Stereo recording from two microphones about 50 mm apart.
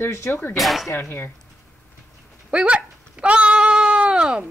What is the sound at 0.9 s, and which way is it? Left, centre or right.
Speech, left.